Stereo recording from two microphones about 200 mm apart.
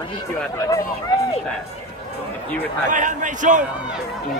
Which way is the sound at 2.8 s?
40° right (ahead or behind).